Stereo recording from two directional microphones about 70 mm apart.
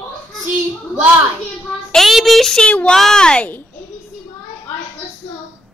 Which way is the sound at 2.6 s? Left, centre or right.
Centre.